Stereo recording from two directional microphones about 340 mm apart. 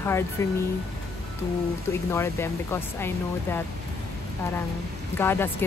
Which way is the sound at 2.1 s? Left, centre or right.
Centre.